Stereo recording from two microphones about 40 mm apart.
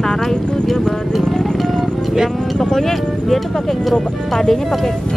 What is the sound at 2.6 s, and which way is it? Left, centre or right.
Speech, centre.